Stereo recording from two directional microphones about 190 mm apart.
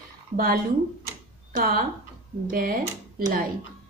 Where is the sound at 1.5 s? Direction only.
50° right (ahead or behind).